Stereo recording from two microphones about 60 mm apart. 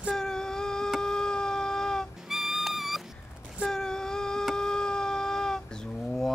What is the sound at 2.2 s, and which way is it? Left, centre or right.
Music, centre.